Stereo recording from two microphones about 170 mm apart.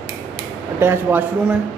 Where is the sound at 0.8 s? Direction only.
15° right (ahead or behind).